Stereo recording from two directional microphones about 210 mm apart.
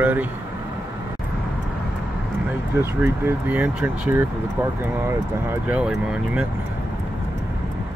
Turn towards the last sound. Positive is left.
turn(degrees=-5)  # may be behind; listen again after turning